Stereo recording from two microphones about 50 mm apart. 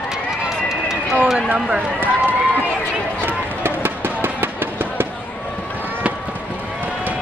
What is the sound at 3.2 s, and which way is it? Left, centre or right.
Run, right.